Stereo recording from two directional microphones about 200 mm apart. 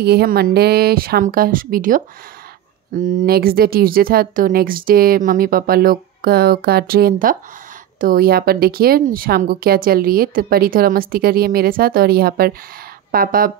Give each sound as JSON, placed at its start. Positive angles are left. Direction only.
{"t": 0.0, "sound": "speech", "side_deg": -50}